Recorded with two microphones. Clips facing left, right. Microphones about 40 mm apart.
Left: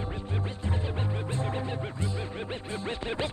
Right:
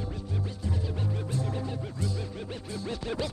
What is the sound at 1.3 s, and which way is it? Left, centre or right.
Music, left.